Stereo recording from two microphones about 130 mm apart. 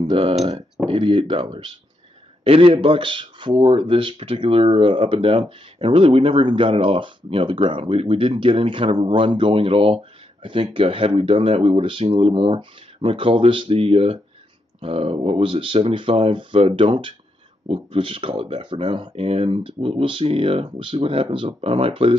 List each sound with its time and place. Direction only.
0.0 s speech: 40° right (ahead or behind)